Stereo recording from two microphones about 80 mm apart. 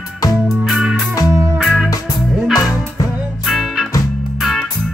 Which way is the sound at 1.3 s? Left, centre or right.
Right.